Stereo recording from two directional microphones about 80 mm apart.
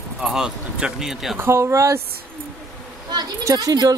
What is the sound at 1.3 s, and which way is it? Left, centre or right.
Speech, right.